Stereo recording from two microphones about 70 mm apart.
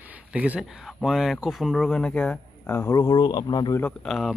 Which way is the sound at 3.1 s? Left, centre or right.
Left.